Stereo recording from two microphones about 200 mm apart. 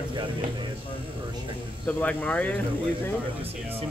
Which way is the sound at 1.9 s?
5° left (ahead or behind).